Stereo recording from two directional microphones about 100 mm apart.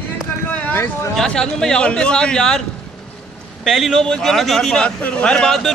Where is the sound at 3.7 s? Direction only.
Centre (ahead or behind).